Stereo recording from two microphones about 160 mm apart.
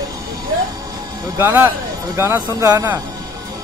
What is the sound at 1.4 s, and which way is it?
Speech, 15° right (ahead or behind).